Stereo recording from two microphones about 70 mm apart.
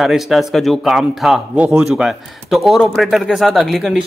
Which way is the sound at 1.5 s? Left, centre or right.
Centre.